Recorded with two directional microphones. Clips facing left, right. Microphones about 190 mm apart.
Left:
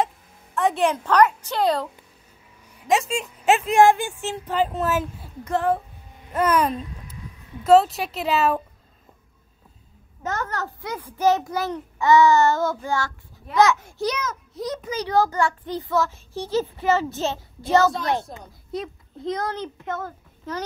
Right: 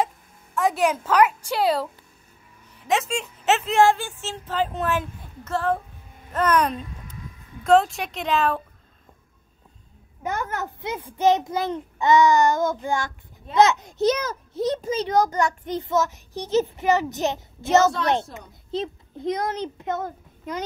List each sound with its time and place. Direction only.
0.6 s a woman's voice: centre (ahead or behind)
3.1 s speech: 10° left (ahead or behind)
10.2 s a child's voice: 15° right (ahead or behind)